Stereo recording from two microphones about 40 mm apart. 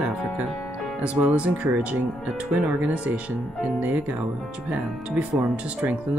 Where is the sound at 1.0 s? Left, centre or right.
Right.